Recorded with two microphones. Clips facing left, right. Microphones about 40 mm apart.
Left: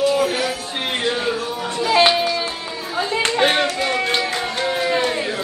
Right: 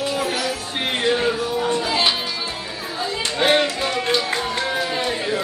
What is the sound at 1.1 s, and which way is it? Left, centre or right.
Music, centre.